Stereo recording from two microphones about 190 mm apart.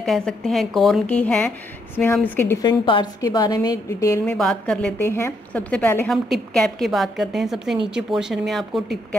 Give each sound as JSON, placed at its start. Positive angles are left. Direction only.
{"t": 0.0, "sound": "a woman's voice", "side_deg": 0}
{"t": 4.3, "sound": "a woman's voice", "side_deg": 5}